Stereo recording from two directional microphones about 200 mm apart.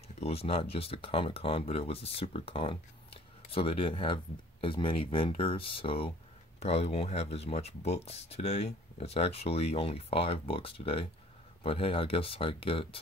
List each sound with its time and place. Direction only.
0.2 s speech: 30° left (ahead or behind)